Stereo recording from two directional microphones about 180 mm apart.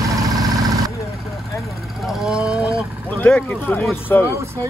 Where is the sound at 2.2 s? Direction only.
5° right (ahead or behind).